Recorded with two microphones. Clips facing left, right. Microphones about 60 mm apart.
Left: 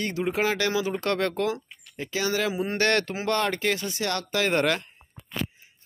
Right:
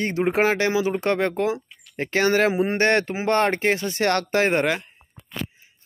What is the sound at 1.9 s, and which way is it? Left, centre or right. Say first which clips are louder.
Speech: right 7 dB; right.